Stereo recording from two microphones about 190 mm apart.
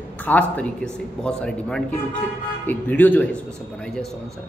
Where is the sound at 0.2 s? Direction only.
10° left (ahead or behind).